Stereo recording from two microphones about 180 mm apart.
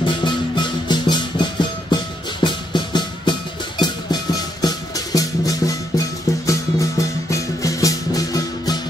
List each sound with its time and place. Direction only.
0.0 s music: 25° left (ahead or behind)